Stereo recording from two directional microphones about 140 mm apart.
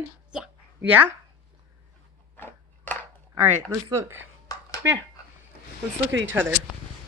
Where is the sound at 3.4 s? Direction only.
15° right (ahead or behind).